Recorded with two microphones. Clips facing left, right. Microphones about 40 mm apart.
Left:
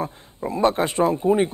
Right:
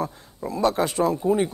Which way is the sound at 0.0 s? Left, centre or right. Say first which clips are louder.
Left 1 dB; left.